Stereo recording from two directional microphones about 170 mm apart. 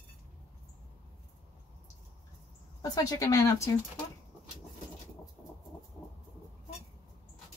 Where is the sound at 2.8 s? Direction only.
20° left (ahead or behind).